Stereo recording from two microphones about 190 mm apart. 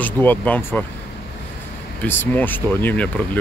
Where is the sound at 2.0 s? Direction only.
10° left (ahead or behind).